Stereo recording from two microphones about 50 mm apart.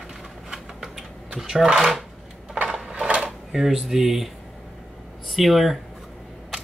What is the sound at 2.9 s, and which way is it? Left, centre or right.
Mechanisms, right.